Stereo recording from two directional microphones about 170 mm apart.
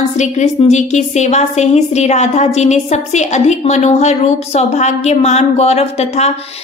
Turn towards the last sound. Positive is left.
turn(degrees=40)  # may be behind; listen again after turning